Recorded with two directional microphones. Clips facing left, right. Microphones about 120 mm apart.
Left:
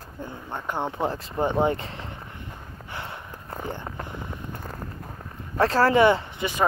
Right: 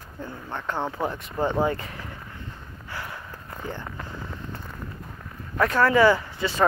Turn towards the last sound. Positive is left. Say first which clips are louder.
# right 2 dB
turn(degrees=20)  # may be behind; listen again after turning